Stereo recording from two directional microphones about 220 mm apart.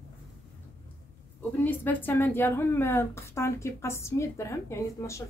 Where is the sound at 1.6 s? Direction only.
10° left (ahead or behind).